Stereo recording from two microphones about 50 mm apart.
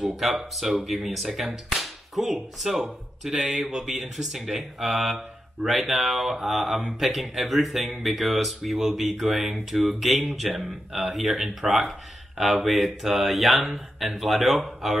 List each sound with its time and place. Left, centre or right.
0.0 s speech: centre